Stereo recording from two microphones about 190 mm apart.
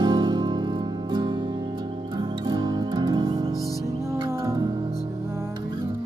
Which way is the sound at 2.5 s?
20° right (ahead or behind).